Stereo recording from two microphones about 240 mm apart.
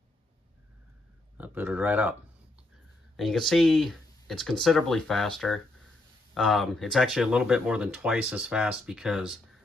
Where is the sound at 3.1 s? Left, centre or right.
Centre.